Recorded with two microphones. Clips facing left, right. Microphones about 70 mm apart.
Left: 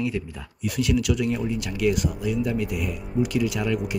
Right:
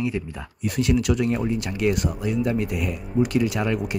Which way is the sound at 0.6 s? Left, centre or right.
Right.